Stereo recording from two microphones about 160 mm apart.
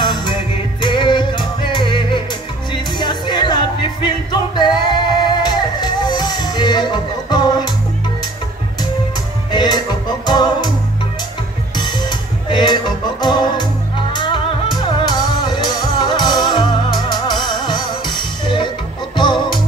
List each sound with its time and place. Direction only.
0.0 s music: 30° left (ahead or behind)
9.5 s music: 30° left (ahead or behind)
11.7 s music: 30° left (ahead or behind)